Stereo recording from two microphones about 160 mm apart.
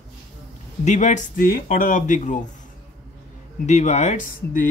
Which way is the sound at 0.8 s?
50° left (ahead or behind).